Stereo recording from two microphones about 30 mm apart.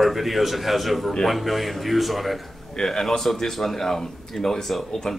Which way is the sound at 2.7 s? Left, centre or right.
Left.